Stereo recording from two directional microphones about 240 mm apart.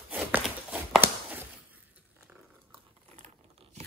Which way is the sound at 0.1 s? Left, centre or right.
Centre.